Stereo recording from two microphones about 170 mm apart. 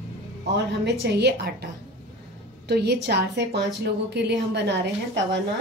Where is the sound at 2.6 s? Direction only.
75° right (ahead or behind).